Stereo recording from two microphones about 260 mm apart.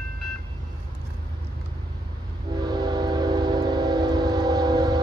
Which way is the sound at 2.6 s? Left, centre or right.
Centre.